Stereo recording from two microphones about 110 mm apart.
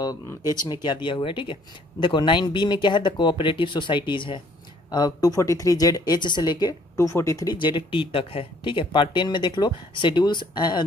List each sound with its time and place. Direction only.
0.5 s speech: 40° left (ahead or behind)
1.0 s speech: 50° left (ahead or behind)
4.9 s speech: 35° left (ahead or behind)
7.0 s speech: 25° left (ahead or behind)
7.5 s speech: 45° left (ahead or behind)